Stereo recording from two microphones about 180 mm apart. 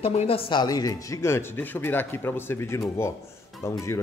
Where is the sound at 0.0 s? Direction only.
30° left (ahead or behind); by 2.8 s 15° left (ahead or behind).